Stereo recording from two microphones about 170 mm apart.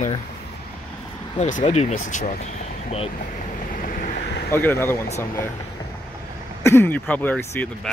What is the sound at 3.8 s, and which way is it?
Vehicle, 55° left (ahead or behind).